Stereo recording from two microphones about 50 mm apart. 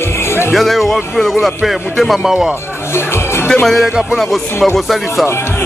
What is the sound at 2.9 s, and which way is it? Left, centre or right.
Music, left.